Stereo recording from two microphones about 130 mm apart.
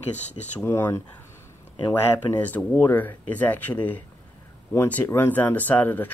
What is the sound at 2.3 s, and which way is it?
Speech, 10° left (ahead or behind).